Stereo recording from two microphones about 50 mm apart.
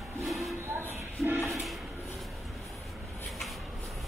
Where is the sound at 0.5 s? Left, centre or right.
Right.